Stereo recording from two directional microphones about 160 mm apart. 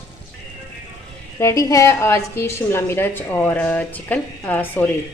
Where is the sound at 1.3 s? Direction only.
20° left (ahead or behind).